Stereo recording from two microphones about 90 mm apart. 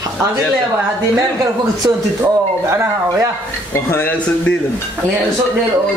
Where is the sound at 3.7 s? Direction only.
25° left (ahead or behind).